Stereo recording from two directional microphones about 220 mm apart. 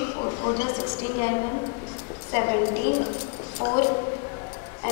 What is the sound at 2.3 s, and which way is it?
A woman's voice, 20° left (ahead or behind).